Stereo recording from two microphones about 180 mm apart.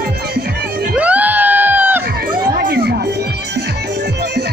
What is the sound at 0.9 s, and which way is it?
Screaming, 10° right (ahead or behind).